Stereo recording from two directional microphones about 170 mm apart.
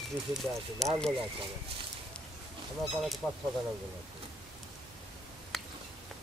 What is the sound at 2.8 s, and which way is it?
Speech, centre (ahead or behind).